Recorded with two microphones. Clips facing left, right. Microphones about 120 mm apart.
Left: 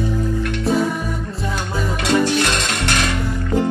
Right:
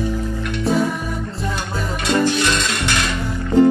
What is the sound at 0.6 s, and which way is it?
Music, centre (ahead or behind).